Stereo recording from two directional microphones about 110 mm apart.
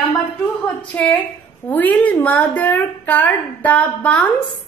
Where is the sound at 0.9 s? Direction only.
10° left (ahead or behind).